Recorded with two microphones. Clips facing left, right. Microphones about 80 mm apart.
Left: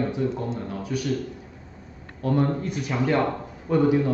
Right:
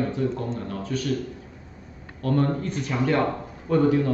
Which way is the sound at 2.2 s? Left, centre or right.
Centre.